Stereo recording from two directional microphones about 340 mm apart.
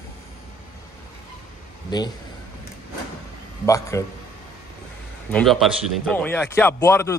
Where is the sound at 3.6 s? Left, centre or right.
Centre.